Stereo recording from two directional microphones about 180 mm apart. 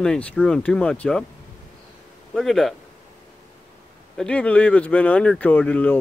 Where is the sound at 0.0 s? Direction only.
5° left (ahead or behind).